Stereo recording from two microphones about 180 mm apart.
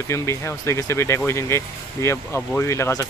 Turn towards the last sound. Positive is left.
turn(degrees=15)  # may be behind; listen again after turning